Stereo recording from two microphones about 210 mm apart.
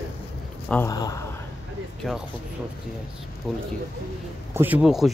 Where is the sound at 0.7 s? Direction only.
15° left (ahead or behind).